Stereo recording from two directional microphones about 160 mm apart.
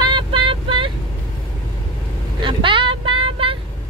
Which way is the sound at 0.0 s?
30° right (ahead or behind).